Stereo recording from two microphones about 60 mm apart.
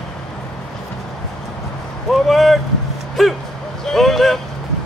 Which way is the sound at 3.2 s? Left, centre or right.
Centre.